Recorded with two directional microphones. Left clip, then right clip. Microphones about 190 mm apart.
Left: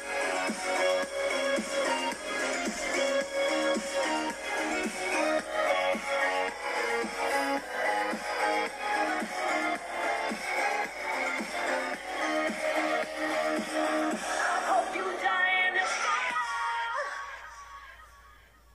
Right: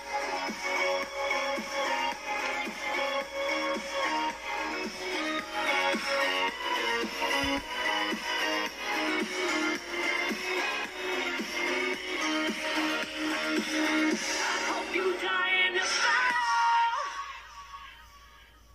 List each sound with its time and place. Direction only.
0.2 s music: 20° left (ahead or behind)
5.1 s music: 5° left (ahead or behind)
5.6 s music: 15° right (ahead or behind)